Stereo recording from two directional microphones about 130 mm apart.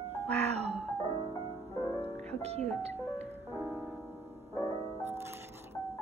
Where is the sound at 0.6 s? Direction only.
55° right (ahead or behind).